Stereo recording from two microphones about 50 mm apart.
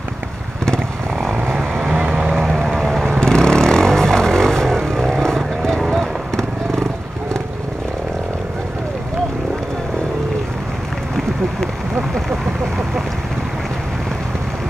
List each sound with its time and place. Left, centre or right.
1.1 s vehicle: centre
1.9 s vehicle: right
2.3 s vehicle: centre
3.2 s vehicle: centre
12.3 s vehicle: centre